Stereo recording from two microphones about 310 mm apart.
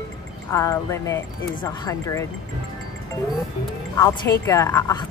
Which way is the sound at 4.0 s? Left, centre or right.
Centre.